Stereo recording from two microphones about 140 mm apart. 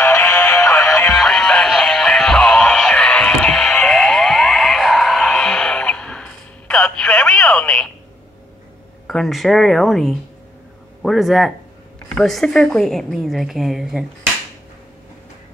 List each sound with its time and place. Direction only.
0.0 s music: 15° left (ahead or behind)
1.1 s music: 5° left (ahead or behind)
6.7 s telephone: 5° left (ahead or behind)
9.0 s speech: centre (ahead or behind)